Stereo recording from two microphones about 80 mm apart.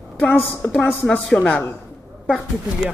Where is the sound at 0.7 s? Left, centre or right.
Centre.